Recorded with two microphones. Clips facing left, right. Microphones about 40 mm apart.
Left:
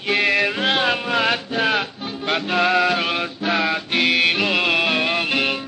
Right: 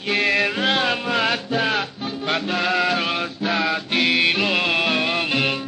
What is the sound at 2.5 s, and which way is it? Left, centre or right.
Music, left.